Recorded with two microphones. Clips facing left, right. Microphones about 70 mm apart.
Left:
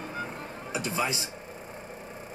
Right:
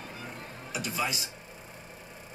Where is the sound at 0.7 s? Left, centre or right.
Left.